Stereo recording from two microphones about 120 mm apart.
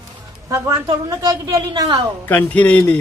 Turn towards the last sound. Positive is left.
turn(degrees=15)  # may be behind; listen again after turning